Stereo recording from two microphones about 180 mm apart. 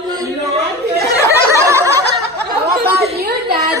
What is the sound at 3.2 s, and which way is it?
Child singing, 60° right (ahead or behind).